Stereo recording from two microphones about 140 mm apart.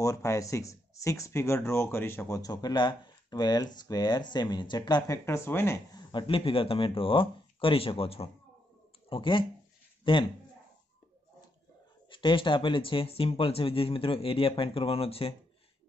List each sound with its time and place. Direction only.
0.0 s speech: 25° left (ahead or behind)
5.9 s a man's voice: 35° left (ahead or behind)
12.1 s speech: 35° left (ahead or behind)